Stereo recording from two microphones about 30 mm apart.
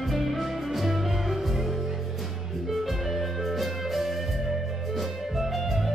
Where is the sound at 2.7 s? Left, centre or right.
Centre.